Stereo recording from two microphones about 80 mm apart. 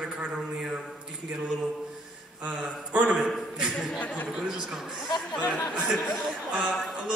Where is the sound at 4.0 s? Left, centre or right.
Centre.